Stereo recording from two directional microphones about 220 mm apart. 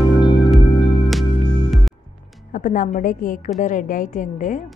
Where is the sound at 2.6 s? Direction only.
35° left (ahead or behind).